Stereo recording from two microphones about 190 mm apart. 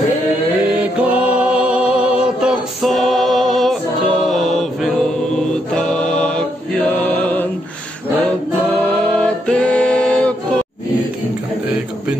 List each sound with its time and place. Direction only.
0.7 s music: 5° right (ahead or behind)
5.5 s mantra: 5° left (ahead or behind)
8.9 s music: 5° left (ahead or behind)